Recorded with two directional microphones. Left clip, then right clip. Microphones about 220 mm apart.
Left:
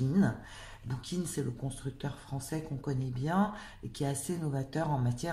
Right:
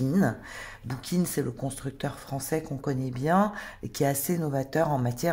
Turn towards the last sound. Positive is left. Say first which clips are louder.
# right 8 dB
turn(degrees=-35)  # may be behind; listen again after turning